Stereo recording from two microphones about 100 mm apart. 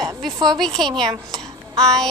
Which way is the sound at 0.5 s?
5° left (ahead or behind).